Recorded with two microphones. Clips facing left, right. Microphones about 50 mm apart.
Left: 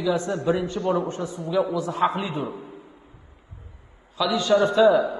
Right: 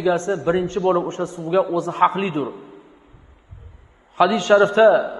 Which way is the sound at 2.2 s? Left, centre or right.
Right.